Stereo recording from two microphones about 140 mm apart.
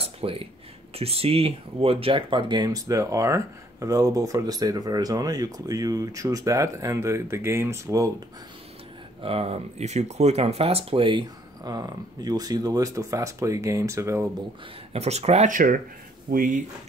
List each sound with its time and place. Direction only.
0.0 s a sound: 40° right (ahead or behind)
0.9 s speech: 45° right (ahead or behind); by 8.1 s 20° right (ahead or behind)
9.2 s speech: 45° right (ahead or behind); by 14.2 s 20° right (ahead or behind)
14.9 s speech: 50° right (ahead or behind); by 16.6 s 75° right (ahead or behind)